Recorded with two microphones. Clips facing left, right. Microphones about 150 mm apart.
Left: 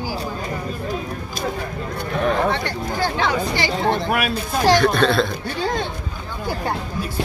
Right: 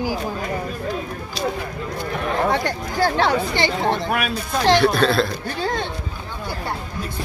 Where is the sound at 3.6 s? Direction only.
5° left (ahead or behind).